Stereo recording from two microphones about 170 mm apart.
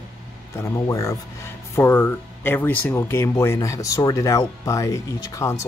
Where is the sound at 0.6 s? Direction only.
20° left (ahead or behind).